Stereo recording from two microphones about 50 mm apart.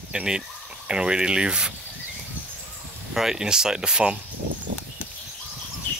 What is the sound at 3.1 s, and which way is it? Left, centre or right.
Speech, centre.